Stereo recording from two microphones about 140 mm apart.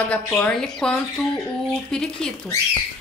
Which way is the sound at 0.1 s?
10° left (ahead or behind).